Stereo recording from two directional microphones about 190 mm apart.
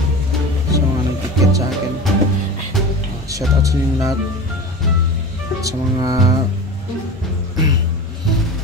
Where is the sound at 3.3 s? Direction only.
15° right (ahead or behind).